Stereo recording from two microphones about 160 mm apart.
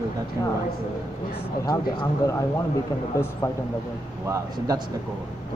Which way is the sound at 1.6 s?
25° left (ahead or behind).